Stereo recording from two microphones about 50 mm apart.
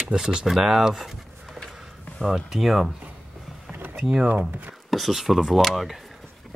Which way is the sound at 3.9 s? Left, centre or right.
Centre.